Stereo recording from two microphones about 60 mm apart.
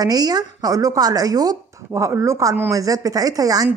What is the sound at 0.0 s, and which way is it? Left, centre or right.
Speech, right.